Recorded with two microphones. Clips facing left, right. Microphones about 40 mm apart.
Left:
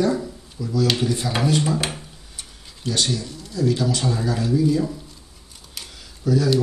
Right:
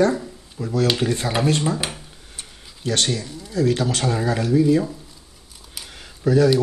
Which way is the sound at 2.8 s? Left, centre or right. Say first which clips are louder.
Right 1 dB; right.